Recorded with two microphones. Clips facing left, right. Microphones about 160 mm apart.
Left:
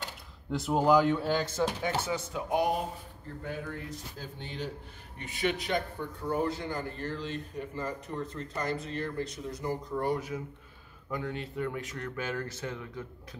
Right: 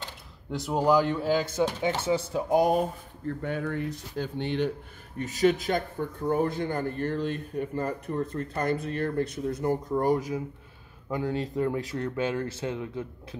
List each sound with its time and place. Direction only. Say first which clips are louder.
0.5 s speech: right 1 dB; centre (ahead or behind); by 2.9 s 45° right (ahead or behind)
3.4 s speech: right 6 dB; 65° right (ahead or behind)
5.2 s speech: right 8 dB; 40° right (ahead or behind); by 13.4 s 20° right (ahead or behind)